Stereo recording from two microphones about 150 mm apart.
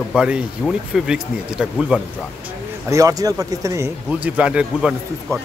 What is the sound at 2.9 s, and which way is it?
Speech, 25° right (ahead or behind).